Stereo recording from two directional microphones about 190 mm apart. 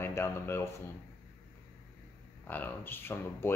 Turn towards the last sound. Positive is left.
turn(degrees=10)  # may be behind; listen again after turning